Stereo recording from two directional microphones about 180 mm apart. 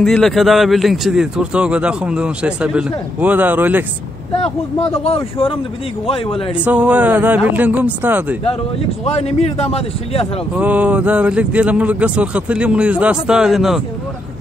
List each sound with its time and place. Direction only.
0.0 s a man's voice: centre (ahead or behind)
4.9 s a man's voice: 35° left (ahead or behind)
6.6 s speech: 10° right (ahead or behind)
9.0 s a man's voice: 35° left (ahead or behind)
10.5 s speech: 10° right (ahead or behind)